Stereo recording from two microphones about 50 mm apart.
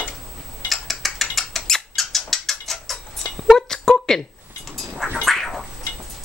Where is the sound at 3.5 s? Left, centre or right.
Centre.